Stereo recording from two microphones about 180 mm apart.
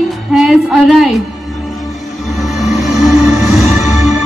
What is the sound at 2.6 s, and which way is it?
Music, centre (ahead or behind).